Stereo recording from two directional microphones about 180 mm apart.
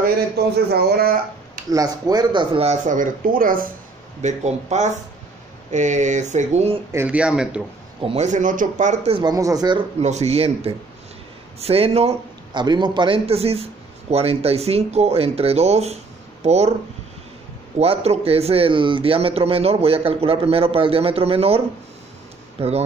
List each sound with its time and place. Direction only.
0.7 s speech: 60° right (ahead or behind)
1.7 s speech: 20° right (ahead or behind); by 3.7 s 50° right (ahead or behind)
4.2 s speech: 40° right (ahead or behind)
6.9 s speech: 10° right (ahead or behind)
8.0 s speech: 35° right (ahead or behind)
9.9 s speech: 40° right (ahead or behind)
17.7 s speech: 35° right (ahead or behind)